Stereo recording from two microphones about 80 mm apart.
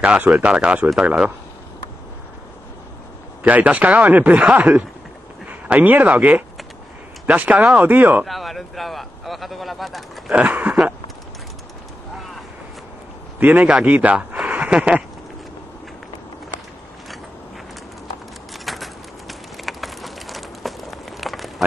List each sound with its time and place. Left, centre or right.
0.0 s speech: centre
3.4 s speech: centre
8.3 s speech: centre
10.3 s speech: centre
12.2 s vehicle: centre
13.4 s speech: right
18.5 s a sound: centre